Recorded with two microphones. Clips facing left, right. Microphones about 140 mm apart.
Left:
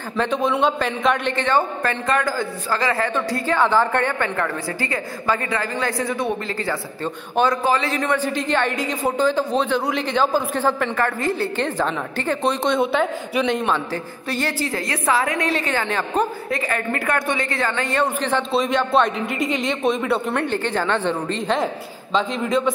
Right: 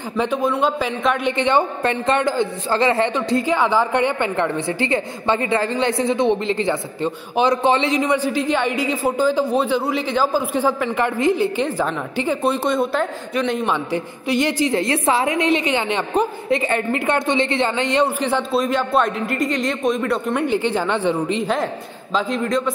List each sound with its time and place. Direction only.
0.2 s a man's voice: 5° right (ahead or behind); by 8.0 s 25° right (ahead or behind)
8.0 s a man's voice: 10° right (ahead or behind)
14.3 s a woman's voice: 20° right (ahead or behind)
18.0 s a man's voice: 10° right (ahead or behind)
20.4 s a man's voice: 10° right (ahead or behind)
22.1 s speech: centre (ahead or behind)